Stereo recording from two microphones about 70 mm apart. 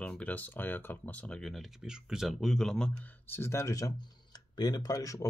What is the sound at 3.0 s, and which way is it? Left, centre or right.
Speech, left.